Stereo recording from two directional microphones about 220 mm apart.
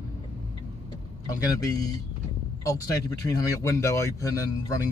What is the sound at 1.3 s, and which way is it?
A man's voice, 15° left (ahead or behind).